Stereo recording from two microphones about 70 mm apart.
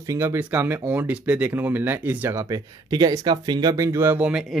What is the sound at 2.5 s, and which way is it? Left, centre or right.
Speech, right.